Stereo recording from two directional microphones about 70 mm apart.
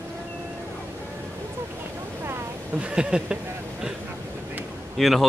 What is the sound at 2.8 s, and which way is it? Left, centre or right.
Speech, centre.